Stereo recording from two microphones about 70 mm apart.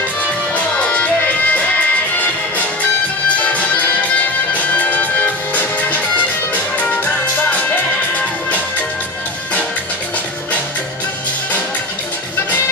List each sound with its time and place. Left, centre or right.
0.7 s music: centre
3.3 s music: centre